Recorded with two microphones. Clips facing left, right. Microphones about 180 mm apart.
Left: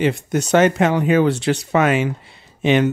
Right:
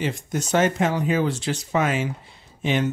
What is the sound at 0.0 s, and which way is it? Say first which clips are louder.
Speech: left 7 dB; 70° left (ahead or behind).